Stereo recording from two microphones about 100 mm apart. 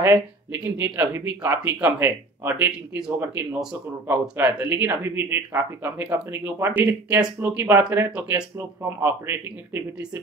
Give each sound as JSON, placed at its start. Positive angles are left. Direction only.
{"t": 0.0, "sound": "speech", "side_deg": -20}
{"t": 1.1, "sound": "speech", "side_deg": -25}